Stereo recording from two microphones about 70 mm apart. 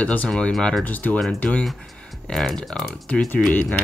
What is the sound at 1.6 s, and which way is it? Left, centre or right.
Speech, centre.